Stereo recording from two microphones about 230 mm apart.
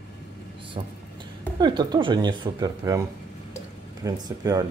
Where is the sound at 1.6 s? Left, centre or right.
Centre.